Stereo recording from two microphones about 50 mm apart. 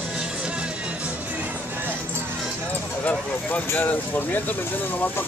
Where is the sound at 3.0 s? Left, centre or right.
Left.